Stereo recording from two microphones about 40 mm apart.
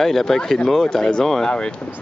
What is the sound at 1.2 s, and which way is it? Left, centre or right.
Speech, centre.